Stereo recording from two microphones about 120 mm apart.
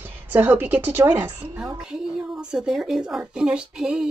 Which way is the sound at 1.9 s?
5° right (ahead or behind).